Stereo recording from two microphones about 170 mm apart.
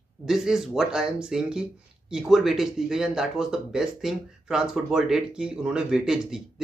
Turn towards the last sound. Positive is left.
turn(degrees=-5)  # may be behind; listen again after turning